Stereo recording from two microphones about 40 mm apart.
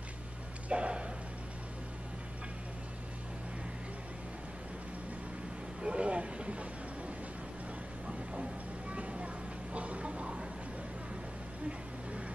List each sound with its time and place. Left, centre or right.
0.7 s a sound: right
5.8 s vehicle: right
8.9 s vehicle: right